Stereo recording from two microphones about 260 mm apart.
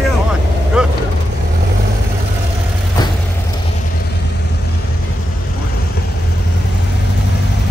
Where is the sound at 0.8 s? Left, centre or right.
Centre.